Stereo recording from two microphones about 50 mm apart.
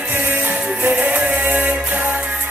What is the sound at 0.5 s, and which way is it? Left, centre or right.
Music, right.